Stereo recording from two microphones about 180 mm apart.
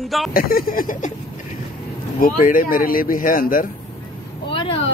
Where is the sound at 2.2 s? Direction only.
50° left (ahead or behind).